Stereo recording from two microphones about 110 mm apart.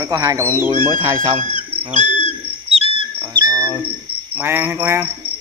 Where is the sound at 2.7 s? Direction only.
60° right (ahead or behind).